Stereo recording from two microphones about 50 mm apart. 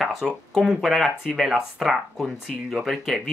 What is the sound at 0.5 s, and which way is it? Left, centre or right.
Speech, centre.